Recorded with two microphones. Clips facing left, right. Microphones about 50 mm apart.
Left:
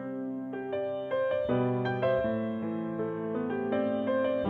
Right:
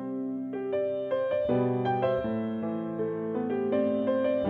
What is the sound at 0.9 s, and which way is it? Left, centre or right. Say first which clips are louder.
Music: right 1 dB; left.